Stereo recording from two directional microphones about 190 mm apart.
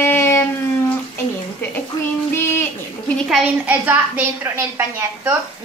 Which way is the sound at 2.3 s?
10° left (ahead or behind).